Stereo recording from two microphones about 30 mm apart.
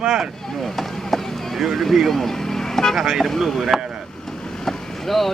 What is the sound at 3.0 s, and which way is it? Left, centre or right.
Speech, centre.